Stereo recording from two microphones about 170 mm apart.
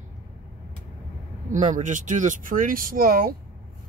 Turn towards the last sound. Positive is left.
turn(degrees=-55)  # may be behind; listen again after turning